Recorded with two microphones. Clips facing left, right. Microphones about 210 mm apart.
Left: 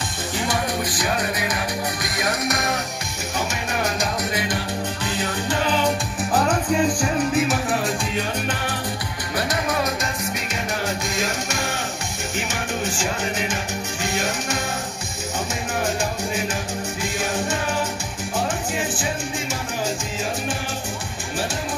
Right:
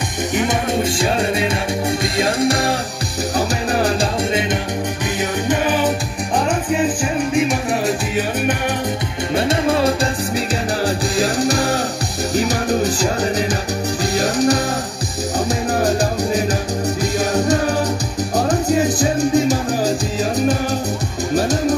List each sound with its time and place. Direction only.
0.4 s music: 20° right (ahead or behind)
5.2 s music: 15° right (ahead or behind)
9.3 s music: 25° right (ahead or behind)
15.8 s music: 35° right (ahead or behind)
21.4 s music: 40° right (ahead or behind)